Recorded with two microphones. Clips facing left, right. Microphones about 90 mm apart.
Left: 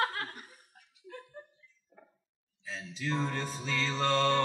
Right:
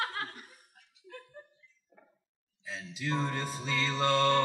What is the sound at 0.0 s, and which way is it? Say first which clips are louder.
Laughter: left 3 dB; 50° left (ahead or behind).